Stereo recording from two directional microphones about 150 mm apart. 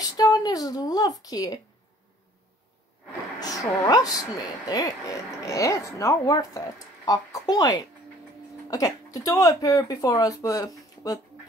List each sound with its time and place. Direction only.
0.0 s speech: 25° left (ahead or behind)
3.3 s speech: 25° left (ahead or behind)